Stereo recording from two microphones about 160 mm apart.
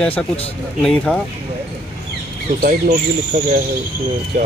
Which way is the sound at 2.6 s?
55° right (ahead or behind).